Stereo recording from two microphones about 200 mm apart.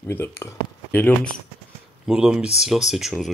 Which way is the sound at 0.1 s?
15° left (ahead or behind).